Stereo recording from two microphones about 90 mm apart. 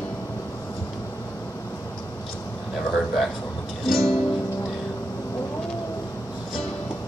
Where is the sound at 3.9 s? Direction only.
Centre (ahead or behind).